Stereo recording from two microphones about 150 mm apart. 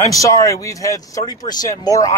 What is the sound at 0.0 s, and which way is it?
Speech, 20° left (ahead or behind).